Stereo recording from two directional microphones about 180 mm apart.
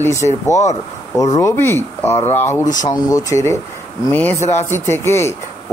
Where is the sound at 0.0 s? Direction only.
15° left (ahead or behind).